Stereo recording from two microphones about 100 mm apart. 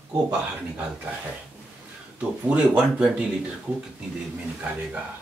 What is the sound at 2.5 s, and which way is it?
Speech, 15° right (ahead or behind).